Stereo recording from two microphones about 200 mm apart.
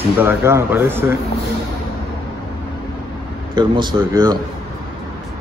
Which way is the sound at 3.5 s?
20° right (ahead or behind).